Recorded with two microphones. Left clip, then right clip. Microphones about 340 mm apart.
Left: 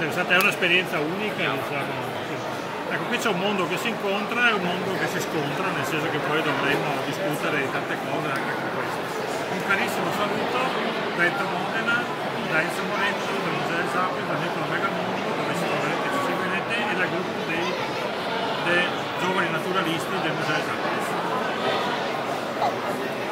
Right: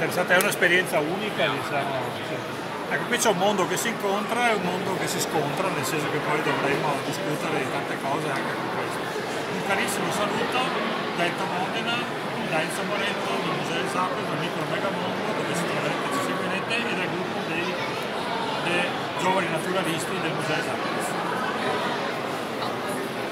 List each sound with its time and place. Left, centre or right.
0.3 s speech: centre